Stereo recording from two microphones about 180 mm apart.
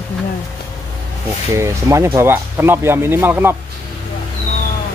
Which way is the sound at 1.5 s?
15° right (ahead or behind).